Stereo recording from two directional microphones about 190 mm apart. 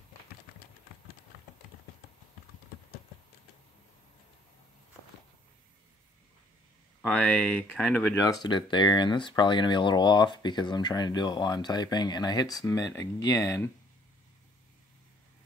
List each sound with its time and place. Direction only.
7.0 s speech: 5° left (ahead or behind)